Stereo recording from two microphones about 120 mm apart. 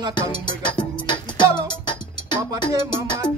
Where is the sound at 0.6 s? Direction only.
40° left (ahead or behind).